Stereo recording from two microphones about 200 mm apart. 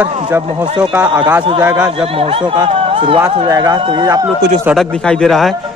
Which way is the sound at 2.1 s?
30° right (ahead or behind).